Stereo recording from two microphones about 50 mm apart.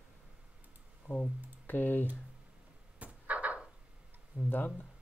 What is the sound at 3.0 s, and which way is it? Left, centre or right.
Frog, right.